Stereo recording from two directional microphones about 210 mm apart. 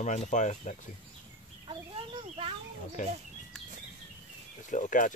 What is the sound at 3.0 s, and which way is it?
Speech, 35° left (ahead or behind).